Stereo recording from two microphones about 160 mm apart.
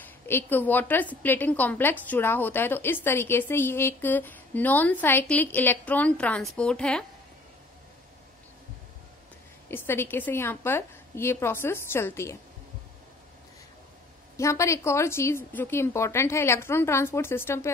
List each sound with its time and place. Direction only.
0.0 s a woman's voice: 15° left (ahead or behind)
9.7 s a woman's voice: 15° left (ahead or behind)
14.3 s a woman's voice: 20° left (ahead or behind)